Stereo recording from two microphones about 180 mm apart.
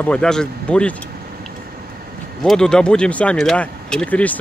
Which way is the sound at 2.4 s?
5° left (ahead or behind).